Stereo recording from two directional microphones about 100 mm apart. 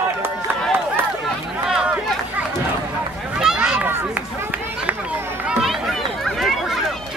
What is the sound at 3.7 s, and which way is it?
Run, 15° right (ahead or behind).